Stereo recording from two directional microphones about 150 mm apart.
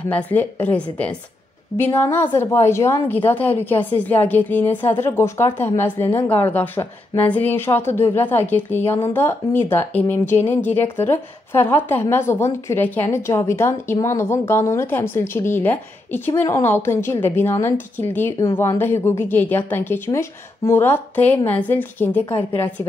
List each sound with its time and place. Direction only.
0.1 s speech: 10° left (ahead or behind)